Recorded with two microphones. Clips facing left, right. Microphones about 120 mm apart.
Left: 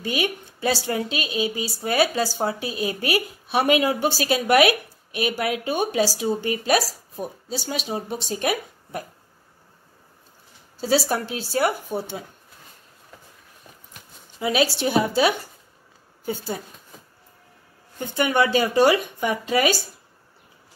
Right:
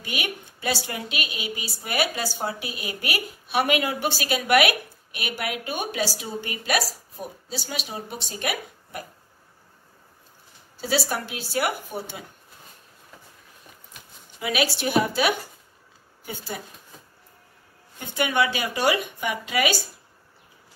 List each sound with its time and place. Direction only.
0.0 s a woman's voice: 30° left (ahead or behind)
11.2 s a woman's voice: 30° left (ahead or behind)
14.4 s a woman's voice: 30° left (ahead or behind)
17.9 s a woman's voice: 35° left (ahead or behind)